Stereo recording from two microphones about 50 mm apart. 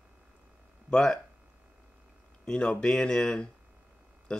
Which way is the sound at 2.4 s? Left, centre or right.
Centre.